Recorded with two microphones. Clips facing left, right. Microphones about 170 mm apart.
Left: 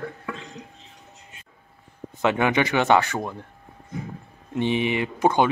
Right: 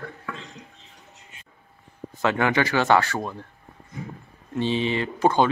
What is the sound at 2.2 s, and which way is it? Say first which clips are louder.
A man's voice: left 1 dB; 20° left (ahead or behind).